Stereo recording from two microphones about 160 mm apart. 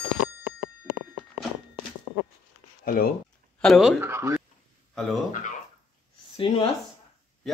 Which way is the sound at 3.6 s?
Centre (ahead or behind).